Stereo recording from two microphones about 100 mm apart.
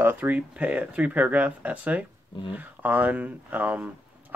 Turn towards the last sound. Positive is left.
turn(degrees=-15)  # may be behind; listen again after turning